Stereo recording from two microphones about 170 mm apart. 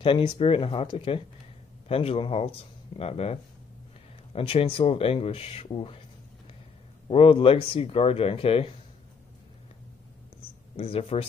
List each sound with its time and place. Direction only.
0.0 s speech: 25° left (ahead or behind)
7.1 s speech: 30° left (ahead or behind)
10.8 s speech: 35° left (ahead or behind)